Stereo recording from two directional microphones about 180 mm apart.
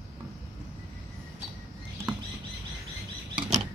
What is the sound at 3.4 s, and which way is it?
Rodents, 30° right (ahead or behind).